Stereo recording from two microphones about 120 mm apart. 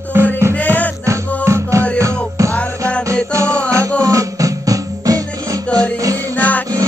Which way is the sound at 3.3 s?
25° right (ahead or behind).